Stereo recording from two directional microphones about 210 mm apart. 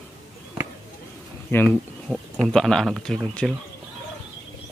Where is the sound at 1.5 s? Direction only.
10° left (ahead or behind).